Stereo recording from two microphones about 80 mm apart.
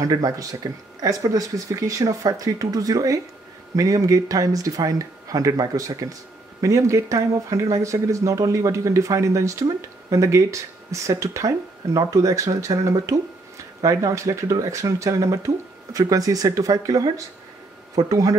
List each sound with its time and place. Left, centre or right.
0.0 s speech: right